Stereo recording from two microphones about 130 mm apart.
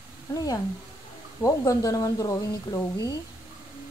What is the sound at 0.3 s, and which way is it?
Speech, 30° left (ahead or behind).